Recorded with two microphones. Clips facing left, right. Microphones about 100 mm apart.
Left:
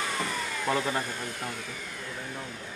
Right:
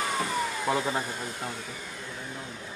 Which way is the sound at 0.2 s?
15° right (ahead or behind).